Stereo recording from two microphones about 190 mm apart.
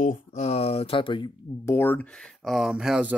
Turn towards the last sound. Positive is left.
turn(degrees=-5)  # may be behind; listen again after turning